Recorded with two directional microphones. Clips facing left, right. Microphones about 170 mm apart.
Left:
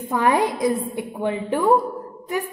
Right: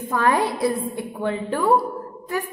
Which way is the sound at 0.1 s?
15° left (ahead or behind).